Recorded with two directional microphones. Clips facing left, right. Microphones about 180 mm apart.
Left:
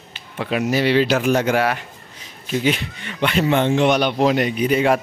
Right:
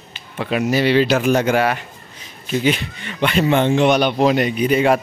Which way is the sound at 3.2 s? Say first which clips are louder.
Right 2 dB; centre (ahead or behind).